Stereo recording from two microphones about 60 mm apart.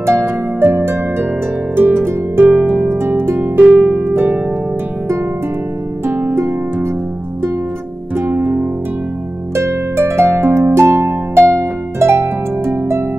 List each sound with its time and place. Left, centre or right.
0.2 s harp: right
2.4 s harp: right
3.0 s harp: right
3.7 s harp: centre
4.0 s harp: right
6.0 s harp: right
8.2 s music: right
9.6 s harp: right